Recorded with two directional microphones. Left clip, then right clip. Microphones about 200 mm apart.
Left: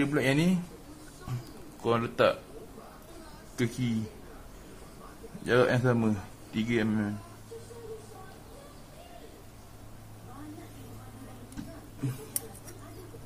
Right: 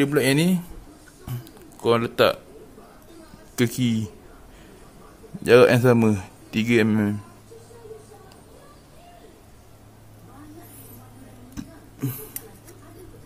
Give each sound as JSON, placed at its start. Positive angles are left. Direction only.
{"t": 0.0, "sound": "speech", "side_deg": -55}
{"t": 1.8, "sound": "speech", "side_deg": -45}
{"t": 3.5, "sound": "speech", "side_deg": -60}
{"t": 5.4, "sound": "speech", "side_deg": -60}